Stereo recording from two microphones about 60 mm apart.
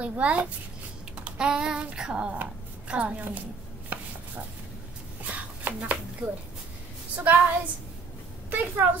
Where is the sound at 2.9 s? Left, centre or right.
Right.